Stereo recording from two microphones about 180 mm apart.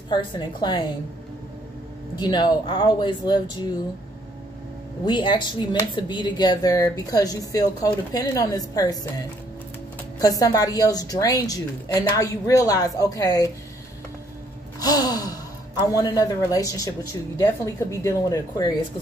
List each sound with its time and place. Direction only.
0.1 s speech: 25° left (ahead or behind)
2.1 s speech: 25° left (ahead or behind)
5.0 s speech: 25° left (ahead or behind)
10.2 s speech: 20° left (ahead or behind)
14.8 s sigh: 20° left (ahead or behind)
15.9 s speech: 20° left (ahead or behind)